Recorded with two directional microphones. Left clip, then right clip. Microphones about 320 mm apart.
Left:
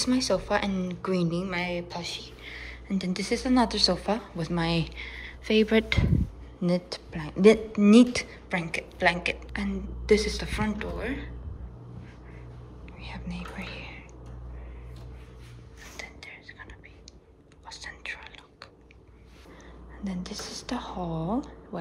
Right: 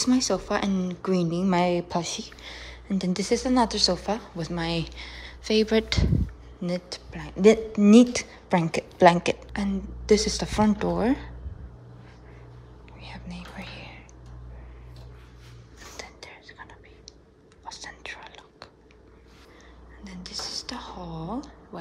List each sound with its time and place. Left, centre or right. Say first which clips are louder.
0.0 s speech: right 1 dB; centre
1.7 s speech: right 7 dB; right
2.0 s speech: right 2 dB; right
13.0 s whispering: left 2 dB; centre
16.0 s whispering: left 1 dB; centre
17.6 s whispering: even; centre
20.0 s speech: right 1 dB; centre